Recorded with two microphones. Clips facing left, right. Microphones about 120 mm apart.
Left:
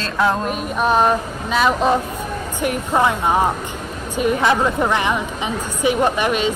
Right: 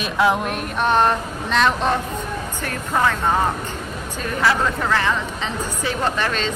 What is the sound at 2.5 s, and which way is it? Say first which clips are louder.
Speech: left 5 dB; 15° left (ahead or behind).